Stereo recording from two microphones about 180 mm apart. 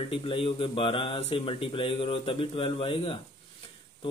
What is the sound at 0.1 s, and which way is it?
Speech, 30° left (ahead or behind).